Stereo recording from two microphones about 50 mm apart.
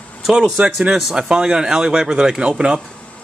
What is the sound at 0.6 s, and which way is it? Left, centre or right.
Speech, right.